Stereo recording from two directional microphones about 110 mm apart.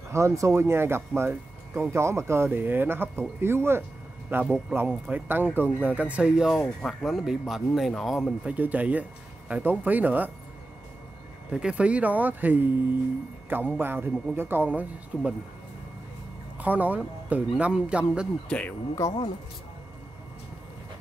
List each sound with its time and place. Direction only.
0.1 s a man's voice: 25° right (ahead or behind); by 8.4 s centre (ahead or behind)
8.5 s a man's voice: 15° right (ahead or behind)
11.5 s a man's voice: 10° right (ahead or behind)
16.5 s a man's voice: 15° right (ahead or behind)
18.5 s speech: 10° left (ahead or behind)
19.0 s speech: 25° left (ahead or behind)